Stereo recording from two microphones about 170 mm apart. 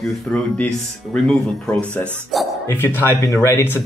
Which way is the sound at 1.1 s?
5° left (ahead or behind).